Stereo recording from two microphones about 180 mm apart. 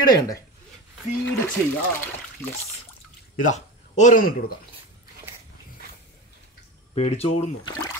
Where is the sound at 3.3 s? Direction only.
45° left (ahead or behind).